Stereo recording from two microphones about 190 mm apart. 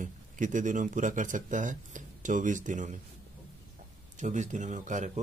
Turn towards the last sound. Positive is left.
turn(degrees=-40)  # may be behind; listen again after turning